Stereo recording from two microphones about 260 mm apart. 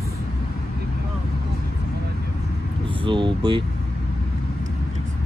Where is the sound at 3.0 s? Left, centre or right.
Centre.